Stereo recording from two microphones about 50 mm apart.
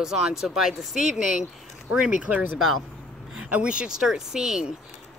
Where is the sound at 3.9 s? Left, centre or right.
Centre.